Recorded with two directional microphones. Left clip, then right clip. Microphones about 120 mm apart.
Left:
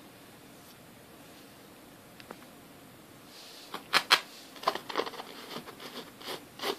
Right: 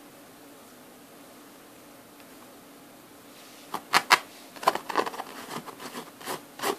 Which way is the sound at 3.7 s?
30° right (ahead or behind).